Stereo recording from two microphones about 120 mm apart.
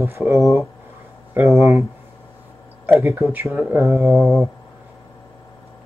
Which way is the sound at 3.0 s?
20° right (ahead or behind).